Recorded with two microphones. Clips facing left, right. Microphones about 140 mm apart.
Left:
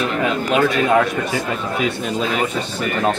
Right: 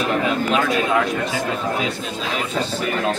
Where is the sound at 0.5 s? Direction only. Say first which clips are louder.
Left 6 dB; 45° left (ahead or behind).